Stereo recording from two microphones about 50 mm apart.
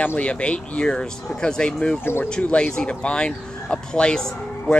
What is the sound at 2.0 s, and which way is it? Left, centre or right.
Speech, left.